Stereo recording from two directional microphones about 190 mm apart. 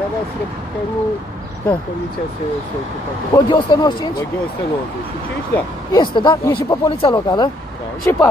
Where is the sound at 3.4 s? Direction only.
25° left (ahead or behind).